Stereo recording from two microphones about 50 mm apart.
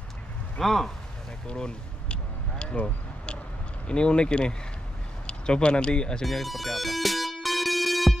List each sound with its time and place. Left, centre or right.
0.6 s speech: centre
1.5 s speech: left
2.6 s a sound: left
3.8 s speech: centre
6.2 s music: centre